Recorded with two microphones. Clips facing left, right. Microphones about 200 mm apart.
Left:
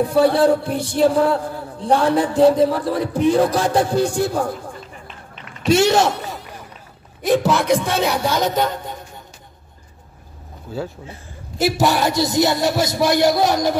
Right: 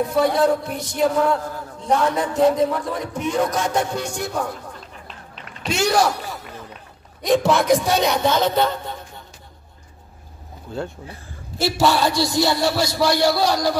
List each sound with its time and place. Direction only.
0.0 s speech: 30° left (ahead or behind)
5.8 s speech: 25° left (ahead or behind)
7.2 s speech: centre (ahead or behind)
10.7 s speech: 5° left (ahead or behind)
11.1 s a man's voice: 20° left (ahead or behind)